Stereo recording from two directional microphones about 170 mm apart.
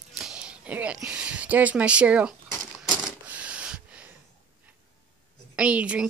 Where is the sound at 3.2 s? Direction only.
10° right (ahead or behind).